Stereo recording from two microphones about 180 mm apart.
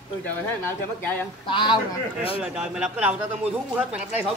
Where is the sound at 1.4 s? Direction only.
25° left (ahead or behind).